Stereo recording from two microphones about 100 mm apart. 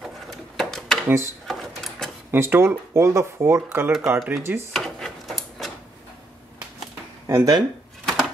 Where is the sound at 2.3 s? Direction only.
25° right (ahead or behind).